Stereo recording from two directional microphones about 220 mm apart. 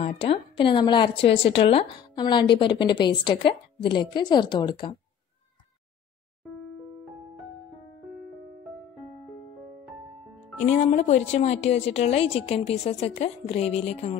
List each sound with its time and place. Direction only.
0.0 s a woman's voice: 25° left (ahead or behind)
10.6 s a woman's voice: 30° left (ahead or behind)